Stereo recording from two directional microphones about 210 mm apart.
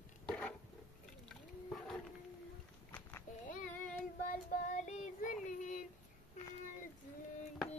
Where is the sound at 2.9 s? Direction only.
10° left (ahead or behind).